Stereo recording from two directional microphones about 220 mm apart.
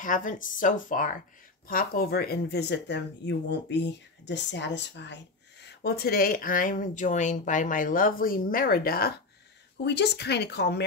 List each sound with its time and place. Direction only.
0.0 s speech: 35° left (ahead or behind)